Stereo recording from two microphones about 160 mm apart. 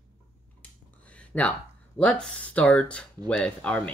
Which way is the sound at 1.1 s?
10° left (ahead or behind).